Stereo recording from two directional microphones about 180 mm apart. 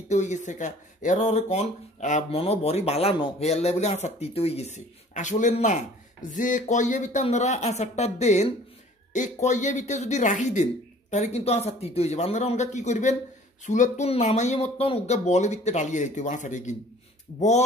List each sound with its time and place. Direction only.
0.1 s speech: 40° left (ahead or behind)